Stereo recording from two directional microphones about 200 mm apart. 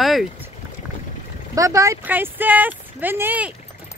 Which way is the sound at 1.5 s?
15° right (ahead or behind).